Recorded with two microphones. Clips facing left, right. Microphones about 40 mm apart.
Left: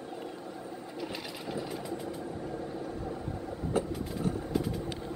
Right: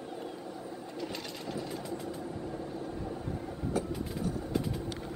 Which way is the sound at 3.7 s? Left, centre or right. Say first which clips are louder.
Left 2 dB; left.